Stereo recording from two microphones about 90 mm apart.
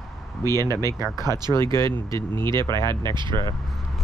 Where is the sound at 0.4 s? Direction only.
45° right (ahead or behind); by 1.8 s 60° right (ahead or behind).